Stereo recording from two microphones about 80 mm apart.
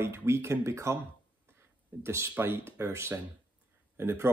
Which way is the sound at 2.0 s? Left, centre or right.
Right.